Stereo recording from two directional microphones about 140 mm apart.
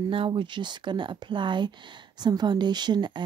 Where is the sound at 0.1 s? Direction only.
35° right (ahead or behind).